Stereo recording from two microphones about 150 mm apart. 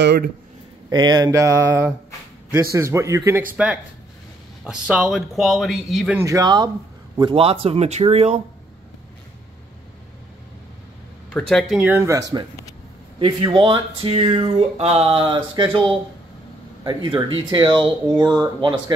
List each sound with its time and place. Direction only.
0.8 s speech: 25° right (ahead or behind)
3.5 s speech: 10° right (ahead or behind)
6.1 s speech: 20° right (ahead or behind)
7.2 s speech: 35° right (ahead or behind)
11.2 s speech: 5° left (ahead or behind)
11.7 s speech: 10° right (ahead or behind); by 18.8 s 30° right (ahead or behind)